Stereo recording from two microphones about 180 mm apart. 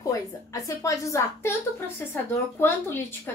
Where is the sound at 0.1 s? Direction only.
20° left (ahead or behind).